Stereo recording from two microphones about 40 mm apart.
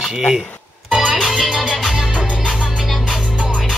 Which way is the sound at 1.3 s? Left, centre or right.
Centre.